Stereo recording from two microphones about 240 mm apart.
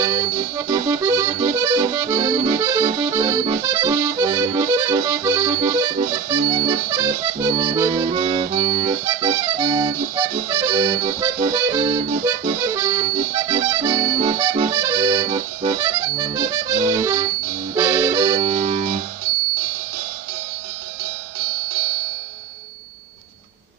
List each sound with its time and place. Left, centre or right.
0.0 s accordion: centre
18.4 s music: right